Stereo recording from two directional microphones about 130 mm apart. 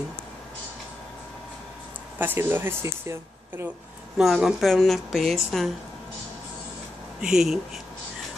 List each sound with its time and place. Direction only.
2.1 s speech: 15° right (ahead or behind)
4.2 s a woman's voice: centre (ahead or behind)
7.2 s a woman's voice: 5° right (ahead or behind)